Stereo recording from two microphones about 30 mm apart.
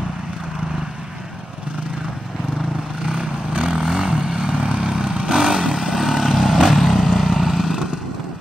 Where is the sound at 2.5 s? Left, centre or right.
Centre; by 3.4 s right.